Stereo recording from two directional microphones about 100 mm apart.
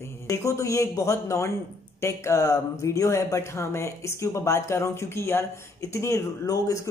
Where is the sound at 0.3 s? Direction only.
30° left (ahead or behind).